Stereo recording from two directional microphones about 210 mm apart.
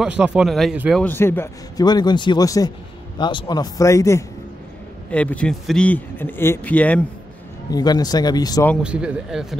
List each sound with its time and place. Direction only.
0.0 s speech: 5° right (ahead or behind)
1.0 s a man's voice: 10° left (ahead or behind)
7.7 s speech: 20° left (ahead or behind)
8.8 s speech: 5° right (ahead or behind)